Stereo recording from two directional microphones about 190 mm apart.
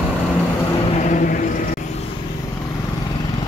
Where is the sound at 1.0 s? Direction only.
45° left (ahead or behind).